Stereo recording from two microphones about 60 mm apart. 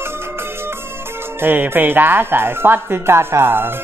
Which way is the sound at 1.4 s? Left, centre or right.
Right.